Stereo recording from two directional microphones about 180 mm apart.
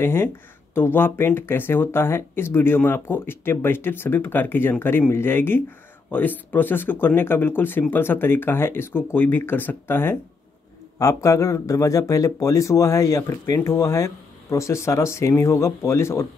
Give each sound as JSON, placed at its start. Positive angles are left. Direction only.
{"t": 0.0, "sound": "speech", "side_deg": 15}